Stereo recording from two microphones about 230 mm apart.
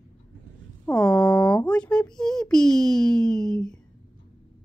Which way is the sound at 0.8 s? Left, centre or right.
Centre.